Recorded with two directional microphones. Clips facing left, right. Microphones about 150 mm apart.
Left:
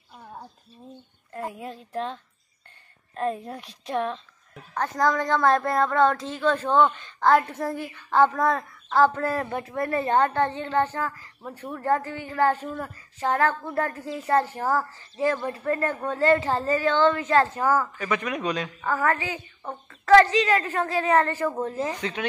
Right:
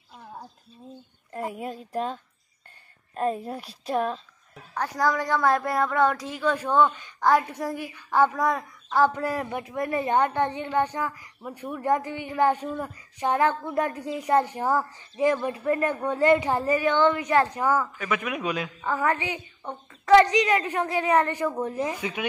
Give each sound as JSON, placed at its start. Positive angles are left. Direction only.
{"t": 1.4, "sound": "a woman's voice", "side_deg": -10}
{"t": 3.2, "sound": "a woman's voice", "side_deg": -5}
{"t": 17.9, "sound": "a woman's voice", "side_deg": -5}
{"t": 18.9, "sound": "a woman's voice", "side_deg": -20}